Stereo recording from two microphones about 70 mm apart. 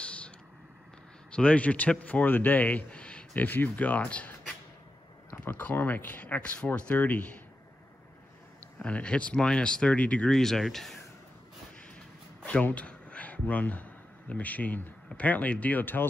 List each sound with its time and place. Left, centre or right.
0.0 s a sound: centre
1.3 s speech: centre
8.7 s speech: centre
10.3 s speech: centre
12.4 s a sound: centre
14.3 s speech: left